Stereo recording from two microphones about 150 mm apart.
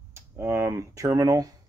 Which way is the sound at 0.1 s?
15° right (ahead or behind).